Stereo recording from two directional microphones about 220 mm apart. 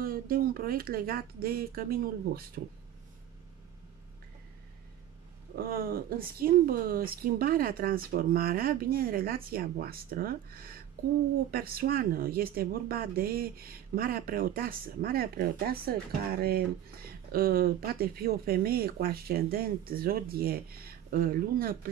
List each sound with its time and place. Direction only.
0.0 s speech: 40° right (ahead or behind)
5.6 s speech: 40° right (ahead or behind)